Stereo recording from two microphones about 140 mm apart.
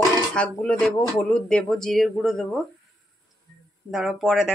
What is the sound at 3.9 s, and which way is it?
Speech, centre (ahead or behind).